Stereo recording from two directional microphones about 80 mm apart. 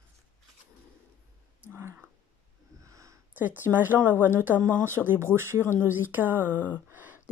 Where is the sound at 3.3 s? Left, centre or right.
Right.